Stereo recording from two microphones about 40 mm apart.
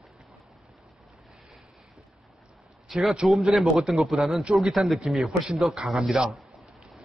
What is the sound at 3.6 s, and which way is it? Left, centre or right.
A man's voice, centre.